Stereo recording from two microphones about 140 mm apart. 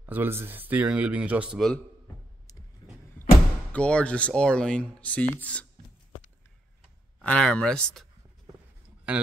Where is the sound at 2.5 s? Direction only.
25° left (ahead or behind).